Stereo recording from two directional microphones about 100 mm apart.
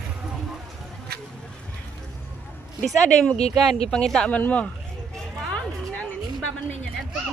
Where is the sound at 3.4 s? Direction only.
90° left.